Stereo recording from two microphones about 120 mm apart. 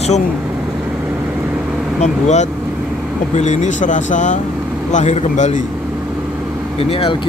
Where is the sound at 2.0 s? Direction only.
70° left (ahead or behind).